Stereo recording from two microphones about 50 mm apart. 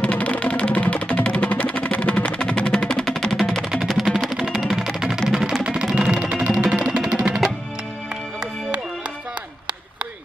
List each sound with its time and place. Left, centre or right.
0.0 s music: left; by 3.5 s centre
3.6 s music: centre